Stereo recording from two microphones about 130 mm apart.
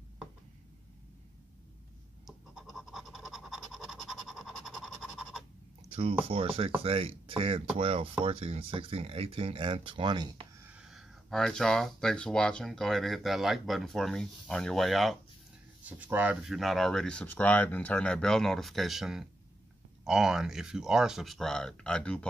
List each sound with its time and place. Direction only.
2.2 s scratch: 5° right (ahead or behind)
6.2 s speech: 45° right (ahead or behind)
10.7 s speech: 5° right (ahead or behind)
15.8 s speech: 10° right (ahead or behind); by 22.2 s 10° left (ahead or behind)